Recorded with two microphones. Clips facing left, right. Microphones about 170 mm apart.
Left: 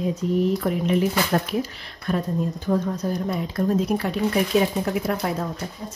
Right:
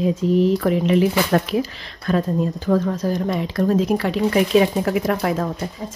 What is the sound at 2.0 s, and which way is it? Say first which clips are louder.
Speech: right 4 dB; 90° right.